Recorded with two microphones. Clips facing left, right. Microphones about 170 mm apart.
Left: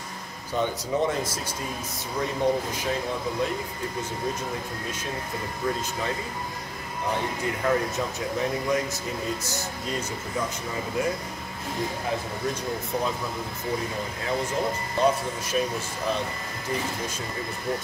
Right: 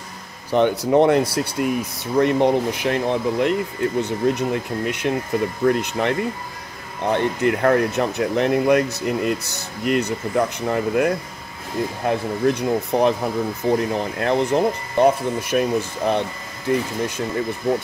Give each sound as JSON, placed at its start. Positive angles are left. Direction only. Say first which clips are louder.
{"t": 0.5, "sound": "speech", "louder": "right 10 dB", "side_deg": -70}